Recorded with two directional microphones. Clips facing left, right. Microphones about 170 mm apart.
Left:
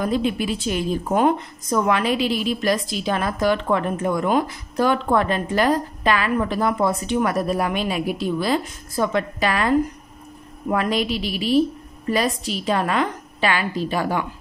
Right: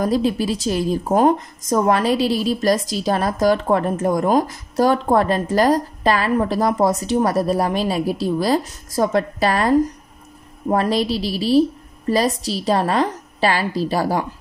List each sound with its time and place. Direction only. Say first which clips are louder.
0.0 s a woman's voice: right 3 dB; 40° right (ahead or behind)